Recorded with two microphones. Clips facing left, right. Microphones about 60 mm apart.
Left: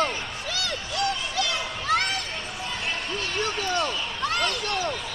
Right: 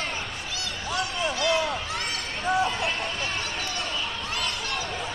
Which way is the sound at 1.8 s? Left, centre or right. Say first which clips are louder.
Left 7 dB; left.